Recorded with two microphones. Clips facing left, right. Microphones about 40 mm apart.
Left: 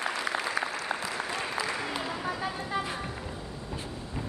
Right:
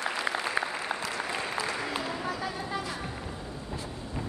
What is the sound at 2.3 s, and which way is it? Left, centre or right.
Vehicle, centre.